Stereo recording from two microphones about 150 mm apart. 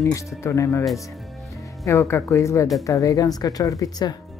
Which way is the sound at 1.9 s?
15° left (ahead or behind).